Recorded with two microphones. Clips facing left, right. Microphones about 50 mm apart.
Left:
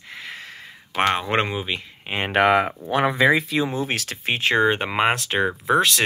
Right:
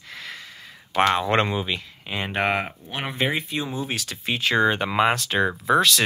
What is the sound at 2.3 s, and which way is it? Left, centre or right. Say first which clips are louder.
Speech: left 7 dB; left.